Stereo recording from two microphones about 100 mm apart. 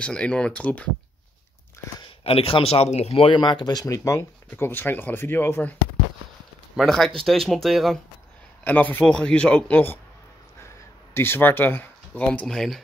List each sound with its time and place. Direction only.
0.0 s speech: 10° left (ahead or behind)
2.2 s speech: 65° left (ahead or behind); by 3.3 s 90° left
3.3 s speech: 50° left (ahead or behind); by 4.3 s 30° left (ahead or behind)
4.5 s speech: 20° left (ahead or behind)
6.8 s speech: 5° left (ahead or behind)
8.6 s speech: 20° left (ahead or behind)
11.1 s speech: 20° left (ahead or behind); by 12.8 s 5° left (ahead or behind)